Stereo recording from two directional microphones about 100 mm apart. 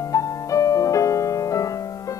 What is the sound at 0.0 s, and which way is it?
Music, 35° left (ahead or behind).